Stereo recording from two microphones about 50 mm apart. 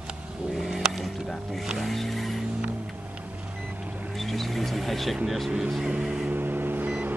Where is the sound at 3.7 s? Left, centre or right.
Right.